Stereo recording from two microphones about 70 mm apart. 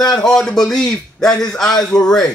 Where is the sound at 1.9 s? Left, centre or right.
Left.